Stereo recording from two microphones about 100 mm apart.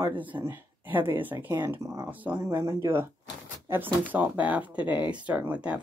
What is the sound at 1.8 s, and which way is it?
Speech, 30° right (ahead or behind).